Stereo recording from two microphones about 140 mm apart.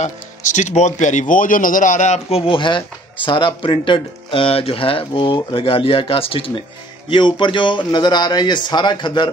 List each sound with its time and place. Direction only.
0.0 s speech: 60° left (ahead or behind); by 9.3 s 35° left (ahead or behind)